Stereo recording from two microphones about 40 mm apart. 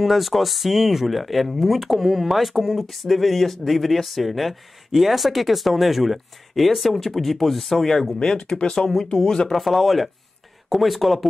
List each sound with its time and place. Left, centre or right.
0.0 s speech: centre
8.4 s speech: left
8.6 s speech: centre
9.5 s speech: centre